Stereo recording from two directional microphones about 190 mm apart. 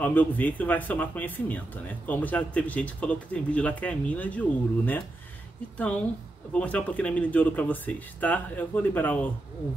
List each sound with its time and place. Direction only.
0.0 s speech: 10° left (ahead or behind)
6.5 s speech: 5° left (ahead or behind)